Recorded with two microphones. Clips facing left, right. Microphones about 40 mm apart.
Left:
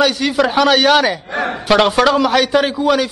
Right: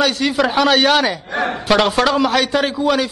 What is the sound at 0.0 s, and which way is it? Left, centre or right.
A man's voice, centre.